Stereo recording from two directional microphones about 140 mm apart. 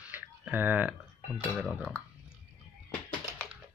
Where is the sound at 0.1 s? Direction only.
10° right (ahead or behind).